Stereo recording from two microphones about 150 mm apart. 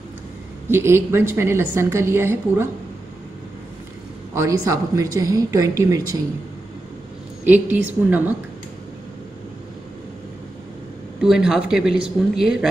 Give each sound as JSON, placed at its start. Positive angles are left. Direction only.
{"t": 0.7, "sound": "a woman's voice", "side_deg": -15}
{"t": 4.3, "sound": "speech", "side_deg": -20}
{"t": 7.4, "sound": "a woman's voice", "side_deg": -10}
{"t": 11.1, "sound": "a woman's voice", "side_deg": -5}